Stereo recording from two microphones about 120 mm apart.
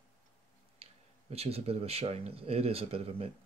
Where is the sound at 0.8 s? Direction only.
55° right (ahead or behind).